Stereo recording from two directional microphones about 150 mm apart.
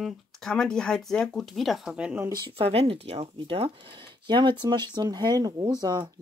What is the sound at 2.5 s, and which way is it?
Speech, 40° right (ahead or behind).